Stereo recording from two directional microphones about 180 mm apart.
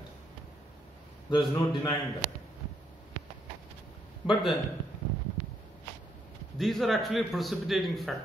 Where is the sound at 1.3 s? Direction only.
25° left (ahead or behind).